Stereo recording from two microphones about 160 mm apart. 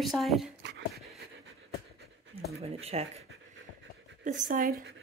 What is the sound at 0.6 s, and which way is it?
Dog, 90° right.